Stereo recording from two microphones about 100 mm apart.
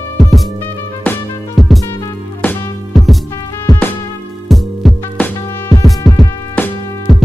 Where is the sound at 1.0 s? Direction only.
15° left (ahead or behind).